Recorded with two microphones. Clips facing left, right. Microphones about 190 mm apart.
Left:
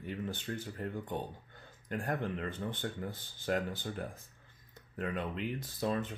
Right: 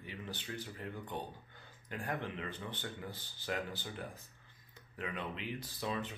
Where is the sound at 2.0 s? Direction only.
50° left (ahead or behind).